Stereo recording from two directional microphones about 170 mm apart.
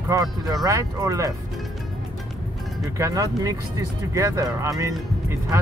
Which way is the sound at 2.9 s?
20° right (ahead or behind).